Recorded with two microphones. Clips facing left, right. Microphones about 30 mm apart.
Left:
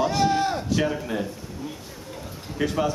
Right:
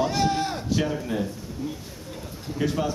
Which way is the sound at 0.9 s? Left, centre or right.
Centre.